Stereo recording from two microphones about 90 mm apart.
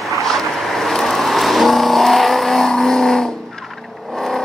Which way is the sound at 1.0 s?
Centre (ahead or behind).